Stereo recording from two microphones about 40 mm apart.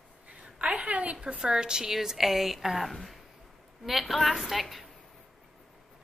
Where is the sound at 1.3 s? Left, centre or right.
Centre.